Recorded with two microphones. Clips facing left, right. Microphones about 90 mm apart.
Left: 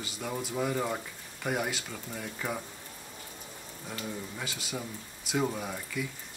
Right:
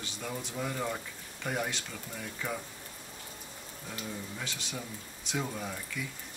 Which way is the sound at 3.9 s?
5° left (ahead or behind).